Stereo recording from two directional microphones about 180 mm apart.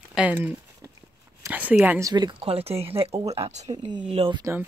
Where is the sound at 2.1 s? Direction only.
25° right (ahead or behind).